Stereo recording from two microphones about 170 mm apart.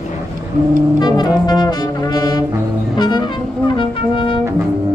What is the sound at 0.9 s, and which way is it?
Brass instrument, 25° left (ahead or behind).